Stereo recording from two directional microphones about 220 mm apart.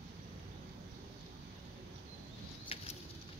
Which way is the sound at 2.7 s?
25° left (ahead or behind).